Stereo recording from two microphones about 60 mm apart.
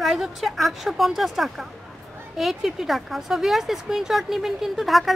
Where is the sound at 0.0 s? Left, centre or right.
Centre.